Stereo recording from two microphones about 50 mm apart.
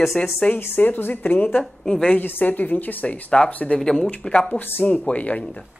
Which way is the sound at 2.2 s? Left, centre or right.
Left.